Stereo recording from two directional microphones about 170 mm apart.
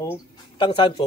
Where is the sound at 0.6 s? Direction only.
30° left (ahead or behind).